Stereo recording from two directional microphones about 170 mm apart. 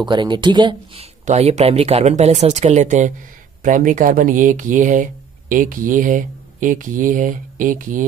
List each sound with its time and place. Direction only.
0.0 s speech: 25° right (ahead or behind)
1.2 s speech: 40° right (ahead or behind)